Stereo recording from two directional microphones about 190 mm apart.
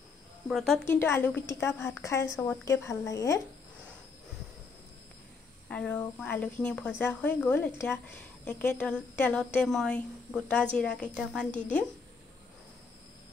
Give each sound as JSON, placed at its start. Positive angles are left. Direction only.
{"t": 0.5, "sound": "speech", "side_deg": 0}
{"t": 0.8, "sound": "speech", "side_deg": 15}
{"t": 5.7, "sound": "a woman's voice", "side_deg": 5}